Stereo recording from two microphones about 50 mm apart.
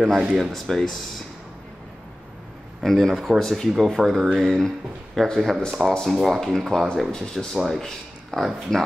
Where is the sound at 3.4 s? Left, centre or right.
Centre.